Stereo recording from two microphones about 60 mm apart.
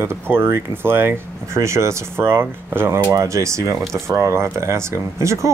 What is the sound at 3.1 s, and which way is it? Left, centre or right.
Speech, right.